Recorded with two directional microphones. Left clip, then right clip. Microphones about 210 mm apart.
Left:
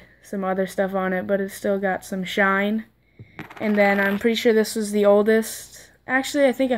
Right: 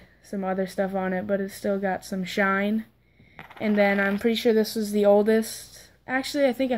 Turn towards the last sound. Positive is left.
turn(degrees=5)  # may be behind; listen again after turning